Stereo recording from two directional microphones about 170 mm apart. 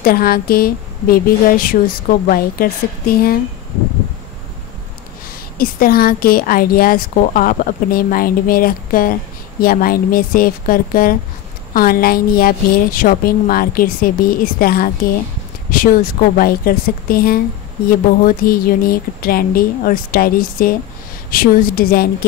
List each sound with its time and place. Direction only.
0.0 s a woman's voice: 60° left (ahead or behind)
5.6 s a woman's voice: 60° left (ahead or behind)